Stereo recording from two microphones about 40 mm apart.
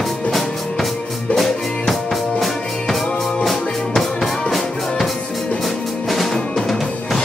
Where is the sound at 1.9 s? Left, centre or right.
Centre.